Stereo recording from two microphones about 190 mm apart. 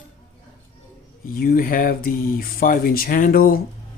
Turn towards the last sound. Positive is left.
turn(degrees=50)  # may be behind; listen again after turning